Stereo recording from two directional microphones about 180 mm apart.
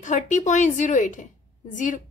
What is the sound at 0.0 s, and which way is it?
A woman's voice, 40° left (ahead or behind).